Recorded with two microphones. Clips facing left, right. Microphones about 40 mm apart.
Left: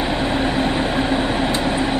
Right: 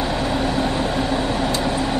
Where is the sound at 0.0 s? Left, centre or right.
Left.